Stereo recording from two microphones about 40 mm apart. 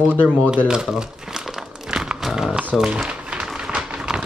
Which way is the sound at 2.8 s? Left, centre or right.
Right.